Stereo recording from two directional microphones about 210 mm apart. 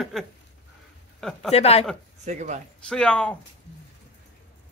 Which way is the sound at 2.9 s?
5° left (ahead or behind).